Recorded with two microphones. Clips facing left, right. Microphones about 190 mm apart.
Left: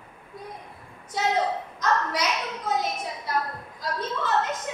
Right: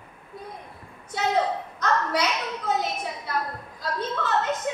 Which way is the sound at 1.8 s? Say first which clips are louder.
Right 1 dB; 60° right (ahead or behind).